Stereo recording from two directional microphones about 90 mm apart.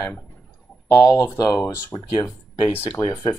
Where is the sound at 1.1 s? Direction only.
25° left (ahead or behind).